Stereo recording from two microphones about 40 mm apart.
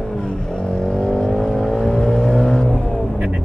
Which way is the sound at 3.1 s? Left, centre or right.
Right.